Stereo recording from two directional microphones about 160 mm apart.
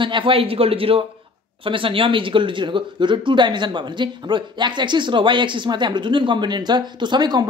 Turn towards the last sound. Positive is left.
turn(degrees=-25)  # may be behind; listen again after turning